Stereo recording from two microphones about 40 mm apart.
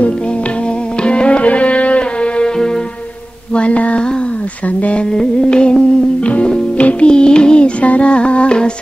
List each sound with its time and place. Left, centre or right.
1.0 s music: left
3.5 s a sound: left
5.1 s music: left